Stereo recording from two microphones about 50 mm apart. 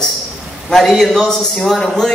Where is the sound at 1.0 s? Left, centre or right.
Centre.